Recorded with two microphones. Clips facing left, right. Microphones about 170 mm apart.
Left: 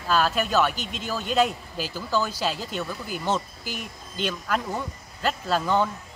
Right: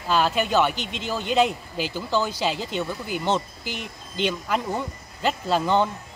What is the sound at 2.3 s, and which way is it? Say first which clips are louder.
Speech: right 3 dB; 5° left (ahead or behind).